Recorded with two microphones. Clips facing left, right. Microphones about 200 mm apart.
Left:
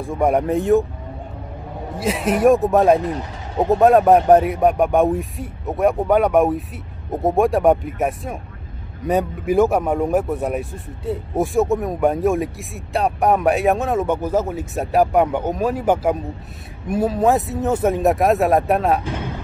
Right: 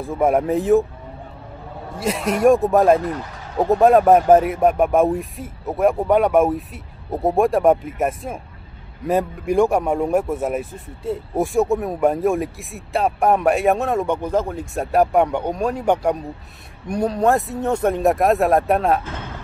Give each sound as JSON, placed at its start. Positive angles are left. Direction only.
{"t": 0.0, "sound": "a man's voice", "side_deg": 0}
{"t": 2.0, "sound": "a man's voice", "side_deg": 0}
{"t": 3.1, "sound": "speech", "side_deg": 20}
{"t": 3.7, "sound": "a man's voice", "side_deg": 0}
{"t": 19.0, "sound": "music", "side_deg": 15}